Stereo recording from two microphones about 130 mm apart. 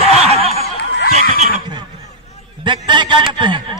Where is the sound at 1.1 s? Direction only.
60° right (ahead or behind).